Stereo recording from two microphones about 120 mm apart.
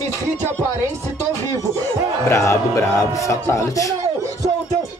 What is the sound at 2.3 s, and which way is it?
Speech, 25° left (ahead or behind).